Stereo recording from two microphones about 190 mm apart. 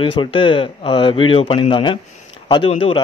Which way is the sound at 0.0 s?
25° left (ahead or behind).